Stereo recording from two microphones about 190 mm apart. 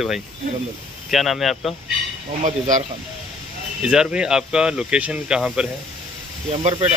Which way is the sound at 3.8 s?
5° right (ahead or behind).